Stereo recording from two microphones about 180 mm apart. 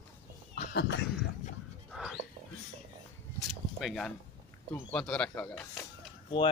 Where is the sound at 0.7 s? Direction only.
70° left (ahead or behind).